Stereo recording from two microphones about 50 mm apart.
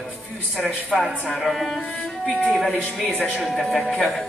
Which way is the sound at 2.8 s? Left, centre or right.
Left.